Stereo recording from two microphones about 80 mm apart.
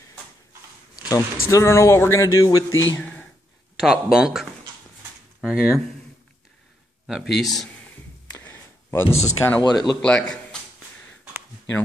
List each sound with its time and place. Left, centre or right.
0.9 s speech: left
3.0 s speech: centre
3.7 s speech: centre
7.1 s speech: centre
8.4 s a sound: left
9.6 s speech: left
10.0 s speech: centre